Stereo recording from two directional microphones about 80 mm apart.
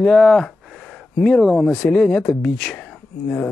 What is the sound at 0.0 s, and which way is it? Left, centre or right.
Speech, centre.